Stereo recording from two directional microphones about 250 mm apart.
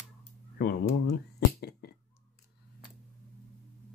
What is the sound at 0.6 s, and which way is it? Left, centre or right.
Speech, left.